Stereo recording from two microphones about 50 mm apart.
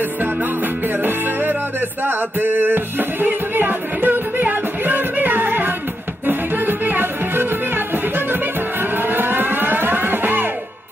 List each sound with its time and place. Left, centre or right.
1.0 s music: right